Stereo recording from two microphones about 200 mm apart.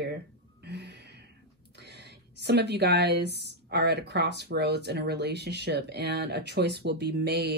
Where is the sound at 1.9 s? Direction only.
55° right (ahead or behind).